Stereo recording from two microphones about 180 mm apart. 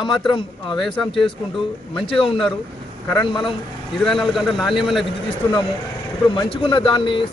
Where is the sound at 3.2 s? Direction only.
25° left (ahead or behind).